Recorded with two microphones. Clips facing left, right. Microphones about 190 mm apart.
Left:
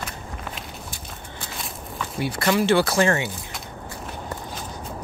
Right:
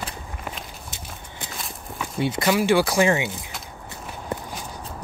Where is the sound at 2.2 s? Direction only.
20° right (ahead or behind).